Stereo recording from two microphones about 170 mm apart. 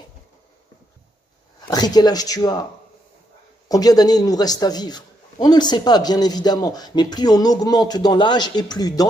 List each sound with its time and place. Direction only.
1.7 s a man's voice: 25° left (ahead or behind)
3.6 s a man's voice: 20° left (ahead or behind)